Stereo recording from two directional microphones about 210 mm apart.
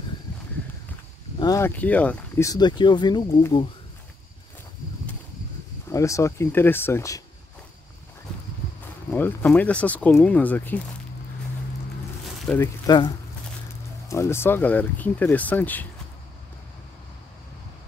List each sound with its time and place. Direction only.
1.4 s speech: 15° left (ahead or behind)
5.9 s speech: 15° left (ahead or behind)
9.1 s speech: 10° left (ahead or behind)
12.4 s speech: 10° left (ahead or behind)
14.0 s speech: 10° left (ahead or behind)